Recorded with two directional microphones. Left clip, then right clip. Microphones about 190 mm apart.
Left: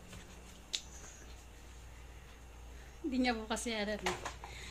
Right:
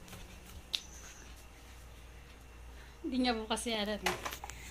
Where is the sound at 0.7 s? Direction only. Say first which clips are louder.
Right 3 dB; 10° left (ahead or behind).